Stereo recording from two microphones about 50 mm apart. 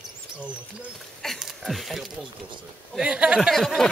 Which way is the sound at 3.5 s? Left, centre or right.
Centre.